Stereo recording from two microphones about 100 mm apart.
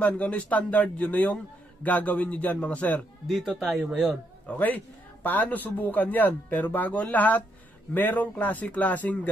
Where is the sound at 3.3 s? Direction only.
Centre (ahead or behind).